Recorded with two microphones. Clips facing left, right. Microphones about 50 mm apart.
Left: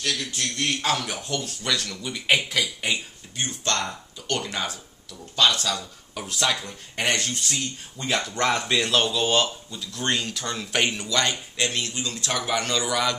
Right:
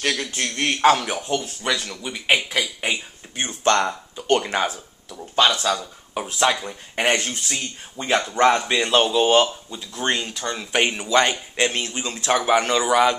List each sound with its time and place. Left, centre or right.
0.0 s a man's voice: right
1.0 s speech: right
5.4 s speech: centre